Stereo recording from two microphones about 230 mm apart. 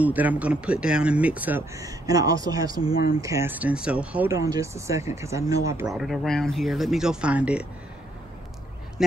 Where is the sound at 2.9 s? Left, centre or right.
Left.